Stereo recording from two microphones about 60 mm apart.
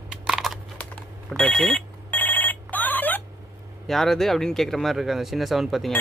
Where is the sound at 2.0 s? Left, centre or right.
Left.